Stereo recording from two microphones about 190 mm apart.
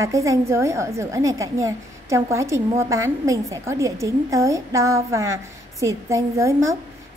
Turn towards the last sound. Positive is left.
turn(degrees=-15)  # may be behind; listen again after turning